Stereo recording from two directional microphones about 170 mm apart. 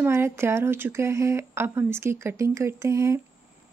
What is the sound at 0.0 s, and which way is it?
Speech, 15° right (ahead or behind).